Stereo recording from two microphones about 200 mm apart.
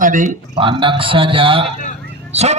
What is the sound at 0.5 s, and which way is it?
A man's voice, 25° right (ahead or behind).